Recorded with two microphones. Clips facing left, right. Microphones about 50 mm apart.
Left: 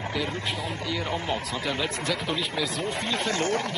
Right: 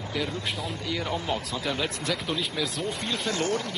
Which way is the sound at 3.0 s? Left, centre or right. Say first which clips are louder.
Left 1 dB; left.